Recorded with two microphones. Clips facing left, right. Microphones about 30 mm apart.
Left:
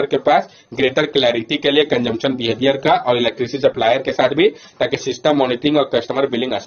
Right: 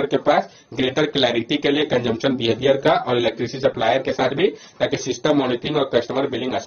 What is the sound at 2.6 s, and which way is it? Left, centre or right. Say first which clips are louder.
Speech: left 1 dB; left.